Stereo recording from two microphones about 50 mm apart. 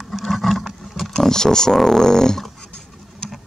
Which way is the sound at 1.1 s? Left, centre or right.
Centre.